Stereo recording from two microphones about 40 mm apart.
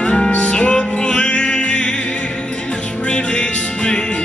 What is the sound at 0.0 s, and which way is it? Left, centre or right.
Music, left.